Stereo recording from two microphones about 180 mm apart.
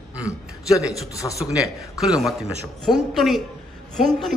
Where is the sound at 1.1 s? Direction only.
20° left (ahead or behind).